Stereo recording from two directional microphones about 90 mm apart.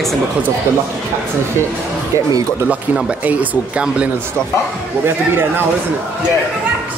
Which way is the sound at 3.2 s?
15° right (ahead or behind).